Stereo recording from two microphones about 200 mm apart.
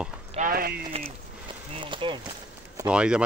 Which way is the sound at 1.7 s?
25° right (ahead or behind).